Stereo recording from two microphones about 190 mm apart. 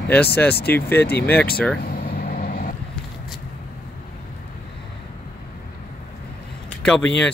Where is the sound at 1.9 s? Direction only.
50° left (ahead or behind).